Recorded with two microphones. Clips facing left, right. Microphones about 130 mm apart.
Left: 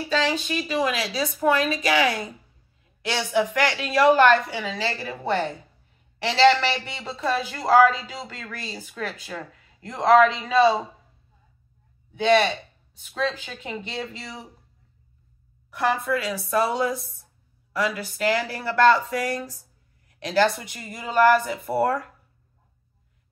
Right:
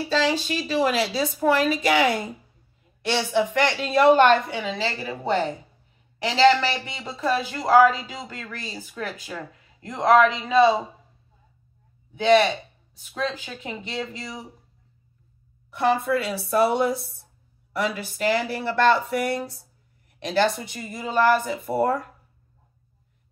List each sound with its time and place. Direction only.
0.5 s a woman's voice: 30° right (ahead or behind)
3.3 s a woman's voice: 25° right (ahead or behind)
12.1 s speech: 15° right (ahead or behind)
13.6 s speech: 20° right (ahead or behind)
16.1 s a woman's voice: 30° right (ahead or behind)